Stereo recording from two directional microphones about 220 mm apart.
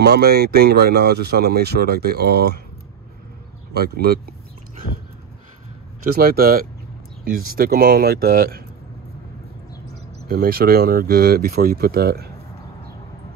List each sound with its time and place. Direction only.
0.0 s speech: 45° right (ahead or behind)
3.7 s a sound: 45° right (ahead or behind)
6.1 s speech: 45° right (ahead or behind)
10.2 s speech: 45° right (ahead or behind)